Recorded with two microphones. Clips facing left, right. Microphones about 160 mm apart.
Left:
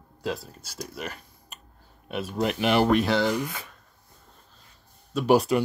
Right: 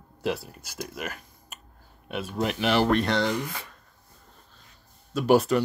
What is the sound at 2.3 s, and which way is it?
Speech, 5° left (ahead or behind).